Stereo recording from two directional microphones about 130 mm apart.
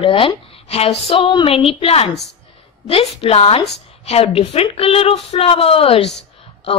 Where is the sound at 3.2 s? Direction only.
50° left (ahead or behind).